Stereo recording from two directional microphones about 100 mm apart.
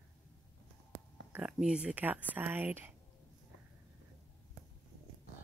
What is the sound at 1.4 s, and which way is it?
Speech, 10° right (ahead or behind).